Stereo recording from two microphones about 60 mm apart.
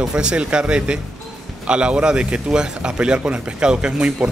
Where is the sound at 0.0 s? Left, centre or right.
Centre.